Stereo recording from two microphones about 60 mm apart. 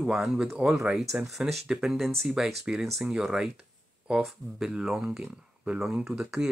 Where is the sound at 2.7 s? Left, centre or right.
Centre.